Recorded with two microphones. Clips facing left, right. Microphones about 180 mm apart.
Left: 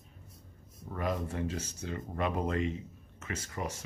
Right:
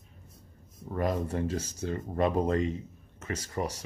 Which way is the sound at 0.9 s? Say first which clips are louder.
Right 4 dB; 40° right (ahead or behind).